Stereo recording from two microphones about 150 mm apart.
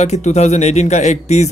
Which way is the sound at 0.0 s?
50° left (ahead or behind).